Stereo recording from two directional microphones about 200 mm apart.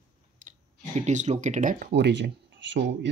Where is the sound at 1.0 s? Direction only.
35° right (ahead or behind).